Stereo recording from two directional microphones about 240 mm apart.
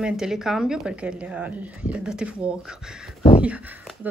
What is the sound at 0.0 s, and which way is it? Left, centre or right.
Speech, centre.